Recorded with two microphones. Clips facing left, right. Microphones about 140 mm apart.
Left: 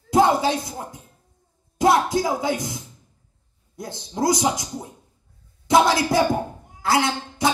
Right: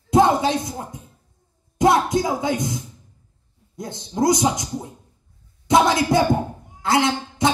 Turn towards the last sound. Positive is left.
turn(degrees=-25)  # may be behind; listen again after turning